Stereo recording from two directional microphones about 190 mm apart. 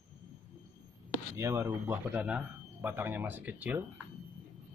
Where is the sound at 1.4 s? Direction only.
15° right (ahead or behind).